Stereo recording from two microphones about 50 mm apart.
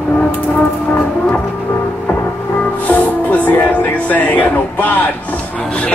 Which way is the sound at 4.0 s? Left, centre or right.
Left.